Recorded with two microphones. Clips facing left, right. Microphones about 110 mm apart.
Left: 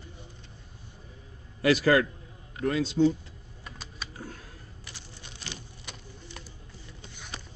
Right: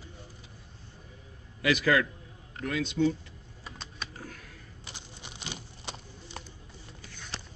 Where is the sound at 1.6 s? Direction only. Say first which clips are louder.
Left 4 dB; 40° left (ahead or behind).